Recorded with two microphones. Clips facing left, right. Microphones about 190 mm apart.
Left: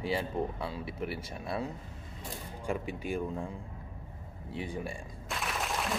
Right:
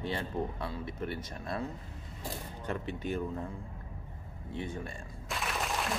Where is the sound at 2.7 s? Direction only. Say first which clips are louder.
Left 1 dB; 10° left (ahead or behind).